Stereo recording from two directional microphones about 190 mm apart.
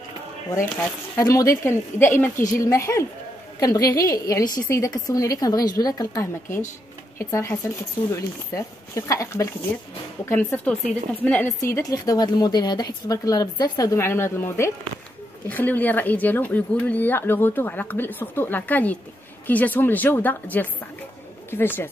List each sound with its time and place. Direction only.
1.1 s a woman's voice: 15° left (ahead or behind)